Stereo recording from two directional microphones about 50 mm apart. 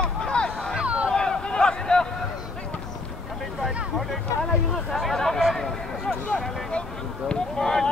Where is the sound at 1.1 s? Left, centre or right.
Centre.